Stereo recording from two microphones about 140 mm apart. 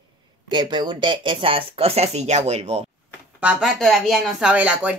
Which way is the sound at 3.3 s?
10° right (ahead or behind).